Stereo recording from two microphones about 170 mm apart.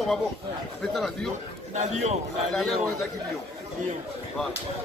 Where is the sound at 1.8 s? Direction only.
40° right (ahead or behind).